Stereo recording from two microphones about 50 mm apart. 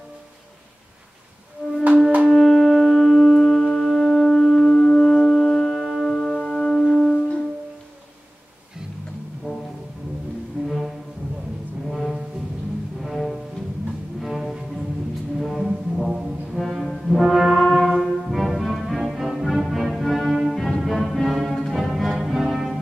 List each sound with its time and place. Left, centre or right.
1.6 s music: left
2.3 s music: centre
4.7 s music: centre
5.2 s music: centre
6.4 s music: centre
9.5 s music: right
10.6 s music: centre
11.9 s music: centre
14.2 s cello: centre
15.3 s brass instrument: centre